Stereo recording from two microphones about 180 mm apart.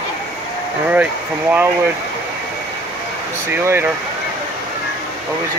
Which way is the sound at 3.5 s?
15° right (ahead or behind).